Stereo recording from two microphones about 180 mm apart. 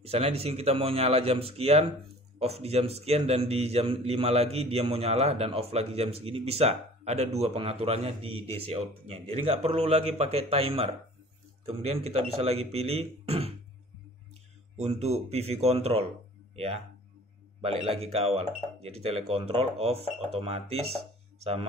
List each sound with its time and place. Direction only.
0.0 s a man's voice: 35° right (ahead or behind)
14.8 s a man's voice: 35° right (ahead or behind)